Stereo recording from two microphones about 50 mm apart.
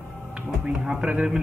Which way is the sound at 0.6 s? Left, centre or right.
Centre.